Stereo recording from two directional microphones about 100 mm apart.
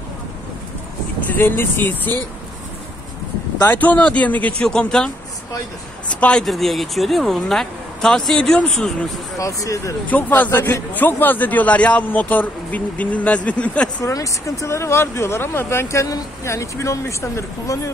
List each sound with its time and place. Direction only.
1.3 s speech: 20° left (ahead or behind)
3.6 s a man's voice: 20° left (ahead or behind)
9.4 s speech: 35° left (ahead or behind)
10.0 s a man's voice: 15° left (ahead or behind)
14.0 s speech: 30° left (ahead or behind)